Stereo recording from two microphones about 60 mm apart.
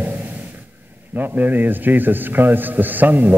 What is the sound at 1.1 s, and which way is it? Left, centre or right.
A man's voice, right.